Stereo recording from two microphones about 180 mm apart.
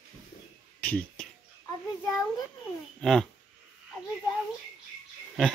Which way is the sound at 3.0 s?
Centre (ahead or behind).